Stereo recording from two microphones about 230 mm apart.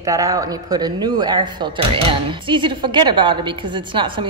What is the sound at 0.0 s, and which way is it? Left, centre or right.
Speech, centre.